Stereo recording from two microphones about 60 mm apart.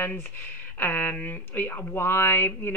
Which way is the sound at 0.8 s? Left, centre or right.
Left.